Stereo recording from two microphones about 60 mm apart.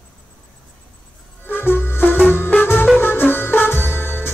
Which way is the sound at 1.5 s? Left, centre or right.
Left.